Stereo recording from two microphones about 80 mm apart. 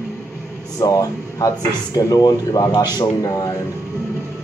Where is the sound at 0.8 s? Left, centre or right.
Left.